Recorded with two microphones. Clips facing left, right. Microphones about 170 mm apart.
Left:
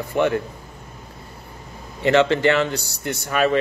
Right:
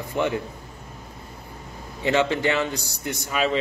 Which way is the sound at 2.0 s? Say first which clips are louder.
Left 5 dB; 15° right (ahead or behind).